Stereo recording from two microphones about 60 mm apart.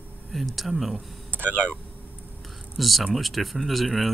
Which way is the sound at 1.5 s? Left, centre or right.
Centre.